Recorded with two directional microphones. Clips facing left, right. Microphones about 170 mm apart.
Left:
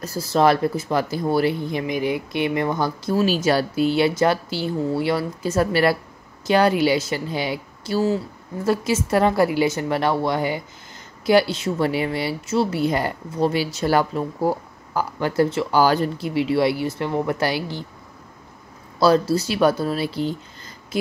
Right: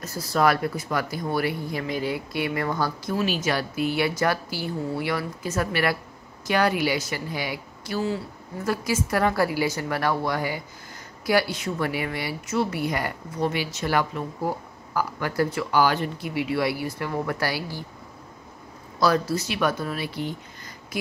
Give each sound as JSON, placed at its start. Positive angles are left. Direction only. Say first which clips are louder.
{"t": 0.0, "sound": "speech", "louder": "left 4 dB", "side_deg": 30}
{"t": 3.2, "sound": "speech", "louder": "left 6 dB", "side_deg": 35}
{"t": 18.9, "sound": "speech", "louder": "left 5 dB", "side_deg": 30}